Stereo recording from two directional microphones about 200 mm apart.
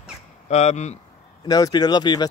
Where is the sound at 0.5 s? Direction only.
35° left (ahead or behind).